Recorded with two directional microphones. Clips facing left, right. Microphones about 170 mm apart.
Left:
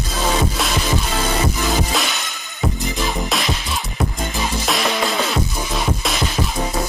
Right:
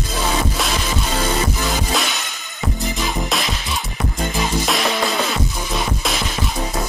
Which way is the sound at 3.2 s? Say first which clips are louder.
Left 1 dB; centre (ahead or behind).